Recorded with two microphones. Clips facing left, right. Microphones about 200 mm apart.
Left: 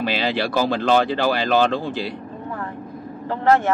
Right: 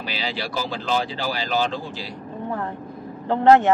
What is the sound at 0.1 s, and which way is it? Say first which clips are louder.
Speech: left 7 dB; 60° left (ahead or behind).